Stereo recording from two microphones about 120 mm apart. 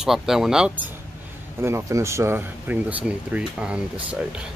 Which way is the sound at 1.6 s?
25° right (ahead or behind).